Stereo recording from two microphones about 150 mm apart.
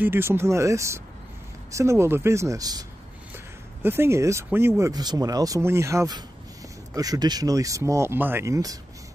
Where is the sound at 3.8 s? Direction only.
15° right (ahead or behind).